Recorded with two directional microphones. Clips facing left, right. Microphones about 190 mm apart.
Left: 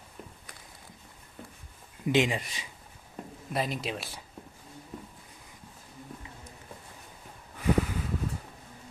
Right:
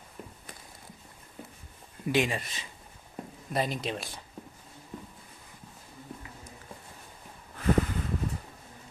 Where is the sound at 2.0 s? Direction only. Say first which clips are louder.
Left 2 dB; 15° left (ahead or behind).